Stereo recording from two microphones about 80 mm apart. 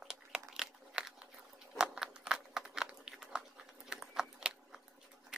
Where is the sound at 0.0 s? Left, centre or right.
Centre.